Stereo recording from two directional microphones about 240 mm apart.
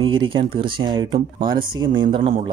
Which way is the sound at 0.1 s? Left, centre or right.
Centre.